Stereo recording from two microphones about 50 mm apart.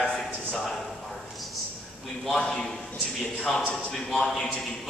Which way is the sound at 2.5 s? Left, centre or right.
Centre.